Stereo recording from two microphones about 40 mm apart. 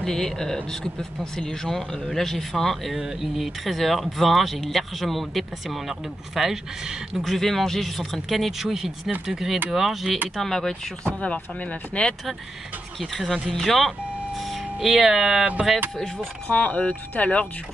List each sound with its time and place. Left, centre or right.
0.0 s speech: centre
3.0 s speech: centre
7.2 s speech: centre
10.3 s speech: centre
11.1 s speech: left
13.0 s speech: centre
14.5 s speech: centre
16.4 s speech: left